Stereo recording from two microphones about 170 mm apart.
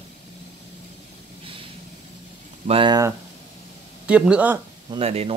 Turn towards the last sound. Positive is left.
turn(degrees=-35)  # may be behind; listen again after turning